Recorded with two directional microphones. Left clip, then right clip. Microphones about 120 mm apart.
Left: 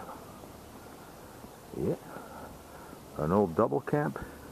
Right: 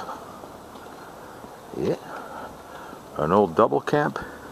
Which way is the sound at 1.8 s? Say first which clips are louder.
Right 7 dB; 30° right (ahead or behind).